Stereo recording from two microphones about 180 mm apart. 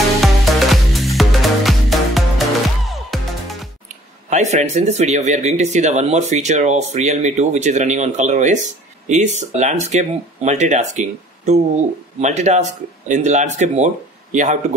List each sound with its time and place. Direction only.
0.2 s music: centre (ahead or behind)
4.3 s a man's voice: 40° right (ahead or behind)